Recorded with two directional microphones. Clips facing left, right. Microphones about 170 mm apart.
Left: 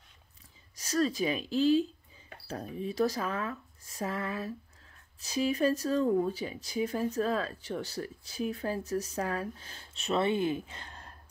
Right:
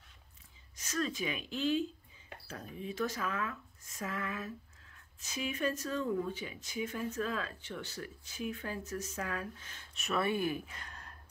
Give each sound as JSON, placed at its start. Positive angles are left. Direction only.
{"t": 0.7, "sound": "speech", "side_deg": 35}